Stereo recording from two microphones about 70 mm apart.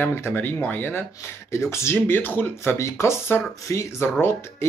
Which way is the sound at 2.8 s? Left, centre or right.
Left.